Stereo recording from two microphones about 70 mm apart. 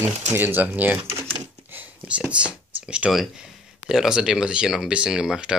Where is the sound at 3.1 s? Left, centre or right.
Centre.